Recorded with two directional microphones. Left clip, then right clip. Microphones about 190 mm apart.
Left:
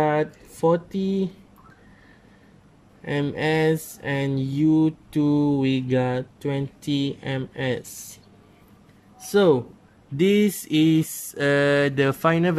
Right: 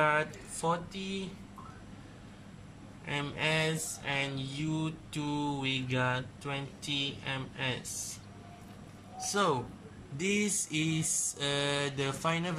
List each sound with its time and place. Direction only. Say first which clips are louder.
0.0 s speech: left 7 dB; 40° left (ahead or behind)
3.1 s mantra: left 8 dB; 55° left (ahead or behind)
4.7 s speech: left 16 dB; 45° left (ahead or behind)
9.3 s speech: left 12 dB; 50° left (ahead or behind)
10.1 s mantra: left 12 dB; 55° left (ahead or behind)